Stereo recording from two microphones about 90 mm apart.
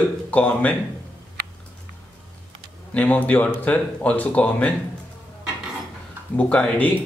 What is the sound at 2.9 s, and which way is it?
A man's voice, 15° left (ahead or behind).